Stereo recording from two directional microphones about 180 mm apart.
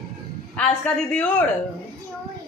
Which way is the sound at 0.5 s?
5° left (ahead or behind).